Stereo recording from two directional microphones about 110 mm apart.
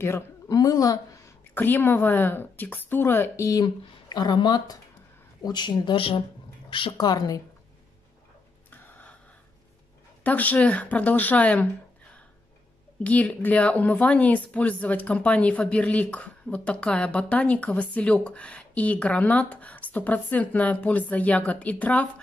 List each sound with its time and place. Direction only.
0.5 s a woman's voice: 35° left (ahead or behind)
1.5 s a woman's voice: 15° left (ahead or behind); by 6.2 s 50° left (ahead or behind)
7.0 s a woman's voice: 35° left (ahead or behind)
8.6 s a sound: 15° left (ahead or behind)
10.2 s speech: 15° left (ahead or behind)
13.0 s speech: 15° left (ahead or behind)